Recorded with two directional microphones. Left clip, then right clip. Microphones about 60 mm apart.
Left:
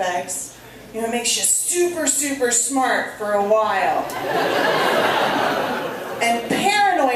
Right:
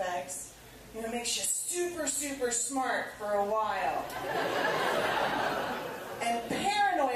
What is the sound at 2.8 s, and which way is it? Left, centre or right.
Speech, centre.